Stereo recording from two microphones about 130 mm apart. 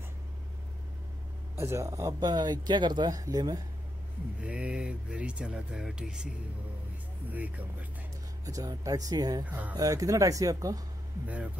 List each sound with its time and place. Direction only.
1.6 s speech: 20° right (ahead or behind)
4.4 s speech: 10° right (ahead or behind)
8.5 s speech: 25° right (ahead or behind)